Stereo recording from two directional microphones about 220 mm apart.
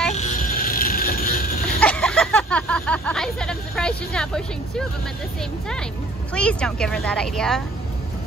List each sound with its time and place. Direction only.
0.1 s a sound: 35° left (ahead or behind)
1.8 s speech: 5° left (ahead or behind)
6.3 s speech: 5° left (ahead or behind)